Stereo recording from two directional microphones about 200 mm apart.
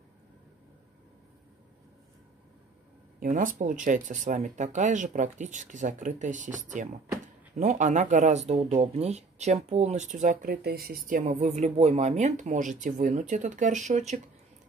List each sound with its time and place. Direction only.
3.2 s speech: 40° right (ahead or behind)
11.1 s speech: 40° right (ahead or behind)